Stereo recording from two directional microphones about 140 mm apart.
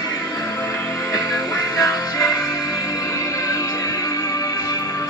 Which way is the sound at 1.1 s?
25° left (ahead or behind).